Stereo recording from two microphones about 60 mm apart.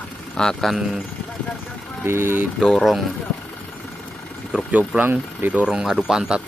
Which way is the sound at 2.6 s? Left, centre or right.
Centre.